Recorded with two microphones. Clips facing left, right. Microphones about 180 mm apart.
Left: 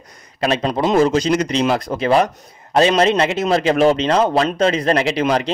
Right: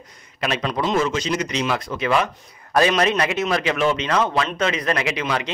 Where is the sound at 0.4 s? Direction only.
35° left (ahead or behind).